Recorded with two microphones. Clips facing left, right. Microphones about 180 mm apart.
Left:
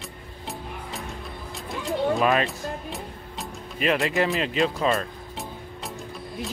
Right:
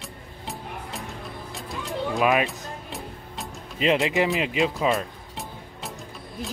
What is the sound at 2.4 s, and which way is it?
Music, centre (ahead or behind).